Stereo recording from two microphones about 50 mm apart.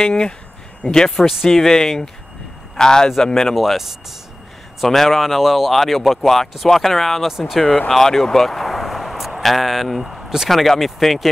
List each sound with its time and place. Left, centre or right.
0.0 s a man's voice: centre
3.5 s speech: centre
7.2 s speech: centre
7.6 s speech: left
7.9 s speech: centre